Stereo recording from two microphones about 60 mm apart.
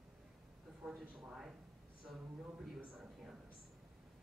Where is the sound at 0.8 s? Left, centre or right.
Centre.